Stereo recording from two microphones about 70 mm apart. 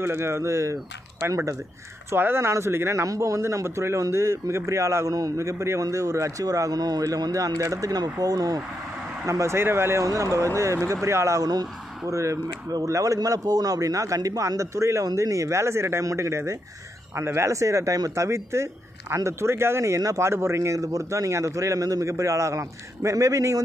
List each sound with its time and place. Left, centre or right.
0.0 s speech: right
2.0 s speech: right
9.2 s speech: right
10.0 s speech: right